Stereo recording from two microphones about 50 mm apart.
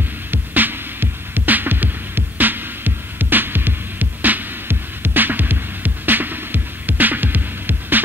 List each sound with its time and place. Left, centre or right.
0.3 s music: right